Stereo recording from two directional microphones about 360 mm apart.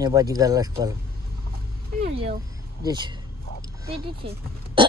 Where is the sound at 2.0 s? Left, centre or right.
Centre.